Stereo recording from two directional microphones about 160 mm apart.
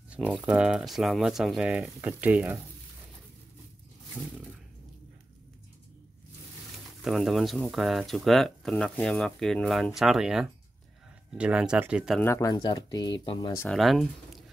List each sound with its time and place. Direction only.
0.1 s speech: 5° right (ahead or behind)
7.0 s speech: centre (ahead or behind)
12.2 s speech: 15° left (ahead or behind)
13.7 s speech: centre (ahead or behind)